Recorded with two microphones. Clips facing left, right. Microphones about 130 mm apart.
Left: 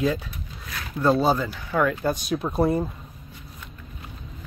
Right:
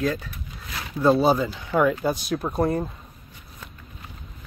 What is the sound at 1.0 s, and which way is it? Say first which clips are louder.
Speech: right 2 dB; 15° right (ahead or behind).